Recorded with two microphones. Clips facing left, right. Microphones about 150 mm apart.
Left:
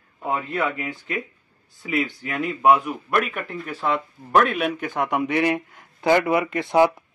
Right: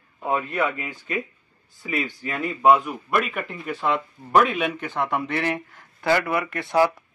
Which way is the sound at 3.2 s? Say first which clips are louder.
Left 1 dB; centre (ahead or behind).